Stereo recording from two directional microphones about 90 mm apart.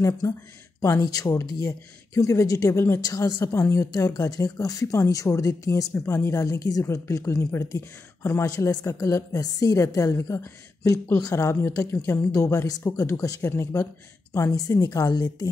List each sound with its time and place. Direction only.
0.7 s speech: 30° left (ahead or behind)
1.0 s speech: 40° left (ahead or behind)
11.1 s speech: 40° left (ahead or behind)
11.9 s speech: 30° left (ahead or behind)
14.5 s speech: 40° left (ahead or behind)